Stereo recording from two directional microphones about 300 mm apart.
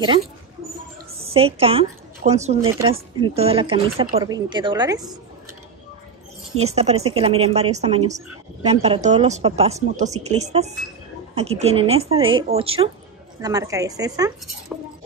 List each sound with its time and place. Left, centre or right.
1.1 s a woman's voice: centre
6.6 s speech: right